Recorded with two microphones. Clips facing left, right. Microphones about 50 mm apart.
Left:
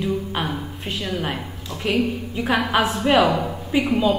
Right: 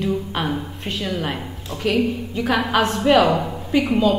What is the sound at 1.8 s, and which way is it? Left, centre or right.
A woman's voice, centre.